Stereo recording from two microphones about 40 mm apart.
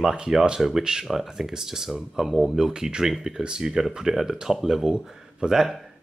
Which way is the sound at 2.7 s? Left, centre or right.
Centre.